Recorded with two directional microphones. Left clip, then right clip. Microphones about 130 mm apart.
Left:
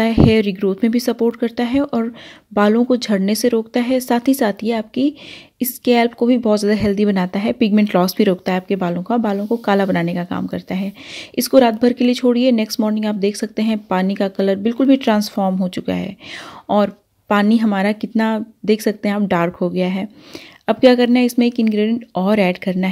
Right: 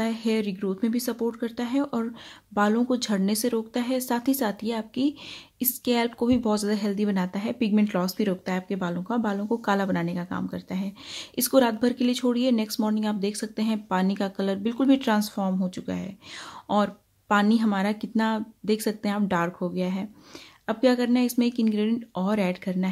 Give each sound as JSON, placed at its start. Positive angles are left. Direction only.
{"t": 0.0, "sound": "speech", "side_deg": 45}